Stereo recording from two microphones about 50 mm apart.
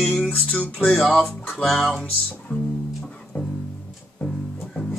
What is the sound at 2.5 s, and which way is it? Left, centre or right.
Music, centre.